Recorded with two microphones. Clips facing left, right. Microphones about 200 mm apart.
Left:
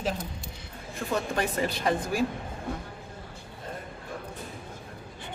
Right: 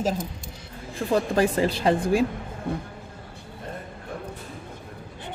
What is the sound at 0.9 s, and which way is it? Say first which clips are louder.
Speech: right 7 dB; 30° right (ahead or behind).